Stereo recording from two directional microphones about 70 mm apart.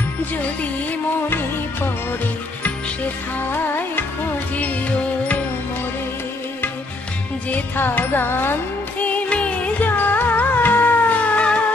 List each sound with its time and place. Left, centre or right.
3.4 s music: left
7.4 s music: left
9.0 s music: centre